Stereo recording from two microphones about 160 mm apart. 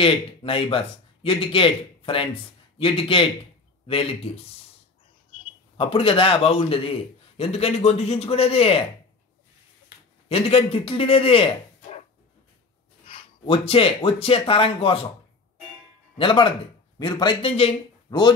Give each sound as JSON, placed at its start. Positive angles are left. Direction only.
{"t": 0.0, "sound": "a man's voice", "side_deg": 35}
{"t": 5.8, "sound": "a man's voice", "side_deg": 35}
{"t": 10.2, "sound": "speech", "side_deg": 35}
{"t": 13.0, "sound": "speech", "side_deg": 35}
{"t": 16.2, "sound": "a man's voice", "side_deg": 30}